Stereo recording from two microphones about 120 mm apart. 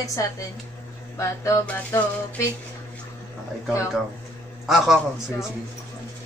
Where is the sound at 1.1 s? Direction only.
25° left (ahead or behind).